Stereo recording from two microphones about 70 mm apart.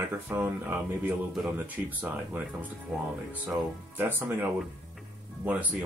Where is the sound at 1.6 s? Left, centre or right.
Right.